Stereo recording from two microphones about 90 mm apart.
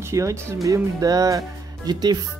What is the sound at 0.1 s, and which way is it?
Speech, 35° right (ahead or behind).